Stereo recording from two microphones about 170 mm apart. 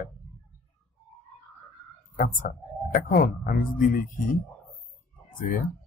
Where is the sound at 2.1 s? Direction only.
55° left (ahead or behind).